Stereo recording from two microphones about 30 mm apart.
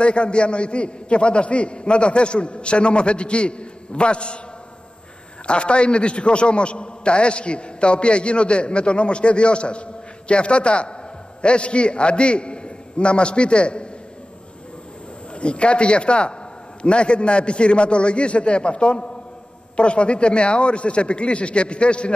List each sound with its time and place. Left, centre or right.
0.0 s a man's voice: left
5.5 s a man's voice: left
15.3 s a man's voice: left